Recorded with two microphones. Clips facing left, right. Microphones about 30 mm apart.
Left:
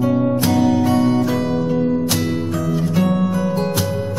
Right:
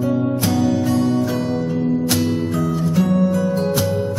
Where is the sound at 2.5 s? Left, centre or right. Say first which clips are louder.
Even; centre.